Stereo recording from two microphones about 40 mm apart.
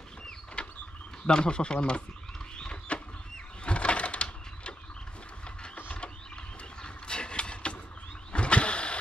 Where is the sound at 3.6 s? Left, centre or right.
Left.